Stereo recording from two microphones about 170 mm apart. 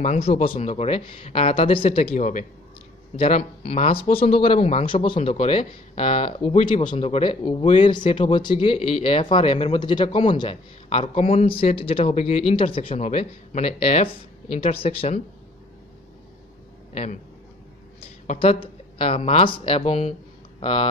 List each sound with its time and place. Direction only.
0.0 s a man's voice: 40° left (ahead or behind)
2.1 s a man's voice: 50° left (ahead or behind)
3.2 s a man's voice: 35° left (ahead or behind)
16.9 s a man's voice: 40° left (ahead or behind)